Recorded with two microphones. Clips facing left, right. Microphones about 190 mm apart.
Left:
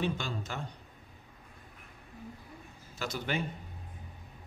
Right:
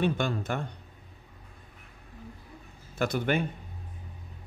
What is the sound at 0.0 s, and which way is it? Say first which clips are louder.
Speech: right 6 dB; 55° right (ahead or behind).